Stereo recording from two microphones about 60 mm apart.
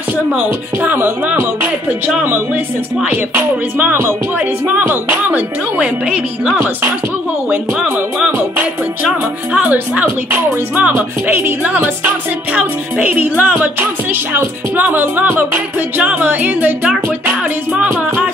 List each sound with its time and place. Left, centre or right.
0.8 s music: right
3.1 s music: right
5.1 s speech: right
9.5 s speech: right
11.2 s music: right
11.6 s speech: right
14.3 s music: right
16.8 s speech: centre